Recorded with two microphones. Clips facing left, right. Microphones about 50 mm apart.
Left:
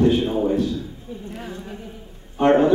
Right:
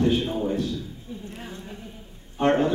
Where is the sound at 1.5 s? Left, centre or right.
Left.